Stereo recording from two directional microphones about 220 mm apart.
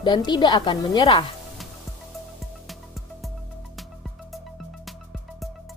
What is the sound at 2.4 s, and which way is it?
Music, centre (ahead or behind).